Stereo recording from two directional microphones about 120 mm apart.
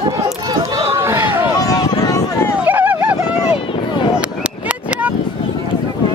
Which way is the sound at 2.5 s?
15° right (ahead or behind).